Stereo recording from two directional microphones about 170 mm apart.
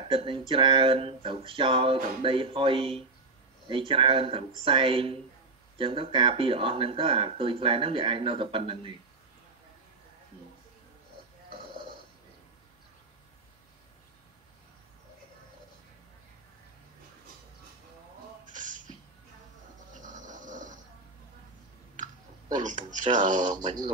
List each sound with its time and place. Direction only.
0.1 s speech: 30° right (ahead or behind)
11.5 s snoring: 30° right (ahead or behind)
18.4 s a sound: 50° right (ahead or behind)
20.0 s snoring: 50° right (ahead or behind)
21.9 s clicking: 50° right (ahead or behind)
23.1 s speech: 45° right (ahead or behind)